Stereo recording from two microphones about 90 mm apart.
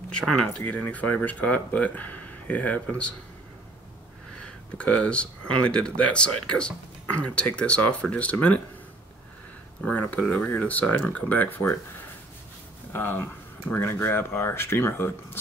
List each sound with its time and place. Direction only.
0.2 s speech: 5° left (ahead or behind)
0.5 s speech: 15° left (ahead or behind)
4.4 s speech: 15° left (ahead or behind)
9.8 s speech: 15° left (ahead or behind)
12.9 s speech: 25° left (ahead or behind)